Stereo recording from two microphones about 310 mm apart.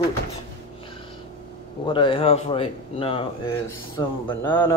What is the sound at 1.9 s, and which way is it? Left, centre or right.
Speech, centre.